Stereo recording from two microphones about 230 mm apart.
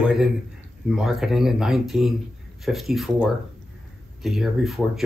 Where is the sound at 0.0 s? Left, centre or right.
Centre.